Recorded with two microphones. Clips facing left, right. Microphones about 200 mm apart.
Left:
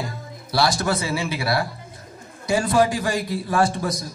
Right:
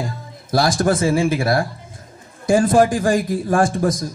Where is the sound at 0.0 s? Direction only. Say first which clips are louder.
Right 3 dB; 50° right (ahead or behind).